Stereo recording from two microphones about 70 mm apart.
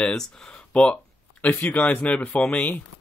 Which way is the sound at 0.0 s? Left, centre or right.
Centre.